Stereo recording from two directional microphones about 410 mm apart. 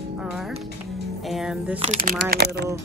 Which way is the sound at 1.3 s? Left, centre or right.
Centre.